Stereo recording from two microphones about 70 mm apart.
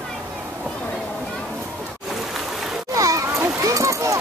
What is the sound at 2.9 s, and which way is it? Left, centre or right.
Splash, right.